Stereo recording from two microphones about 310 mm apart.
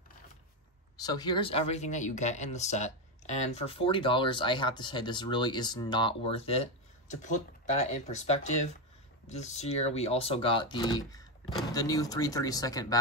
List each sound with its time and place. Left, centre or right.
0.9 s speech: centre